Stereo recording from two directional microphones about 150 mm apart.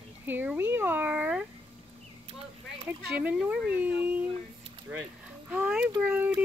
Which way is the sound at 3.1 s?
5° right (ahead or behind).